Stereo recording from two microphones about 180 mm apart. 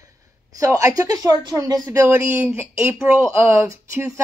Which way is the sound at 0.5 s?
20° right (ahead or behind).